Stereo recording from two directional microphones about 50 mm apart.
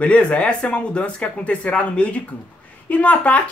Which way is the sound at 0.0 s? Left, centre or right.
Left.